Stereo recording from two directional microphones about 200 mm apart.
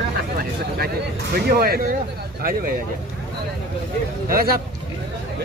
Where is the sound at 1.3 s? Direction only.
50° right (ahead or behind).